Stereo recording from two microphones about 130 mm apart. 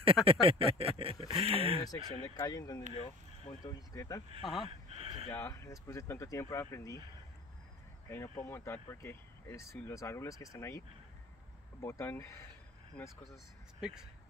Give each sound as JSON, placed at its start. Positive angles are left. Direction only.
{"t": 0.0, "sound": "speech", "side_deg": -45}
{"t": 1.9, "sound": "speech", "side_deg": 30}
{"t": 2.9, "sound": "speech", "side_deg": 50}
{"t": 3.6, "sound": "speech", "side_deg": 30}
{"t": 4.6, "sound": "a sound", "side_deg": -50}
{"t": 5.3, "sound": "speech", "side_deg": 20}
{"t": 8.1, "sound": "speech", "side_deg": 20}
{"t": 11.8, "sound": "speech", "side_deg": 20}
{"t": 13.7, "sound": "speech", "side_deg": -5}